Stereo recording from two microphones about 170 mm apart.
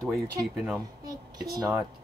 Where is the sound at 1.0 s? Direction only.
20° right (ahead or behind).